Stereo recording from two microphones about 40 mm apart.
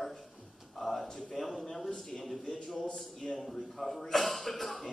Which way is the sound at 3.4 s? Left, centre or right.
Centre.